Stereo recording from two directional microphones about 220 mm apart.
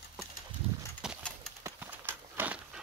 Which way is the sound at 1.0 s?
Centre (ahead or behind).